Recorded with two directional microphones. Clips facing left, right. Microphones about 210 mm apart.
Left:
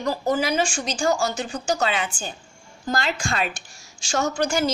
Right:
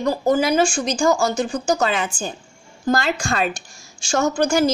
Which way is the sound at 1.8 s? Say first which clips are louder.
Right 3 dB; 45° right (ahead or behind).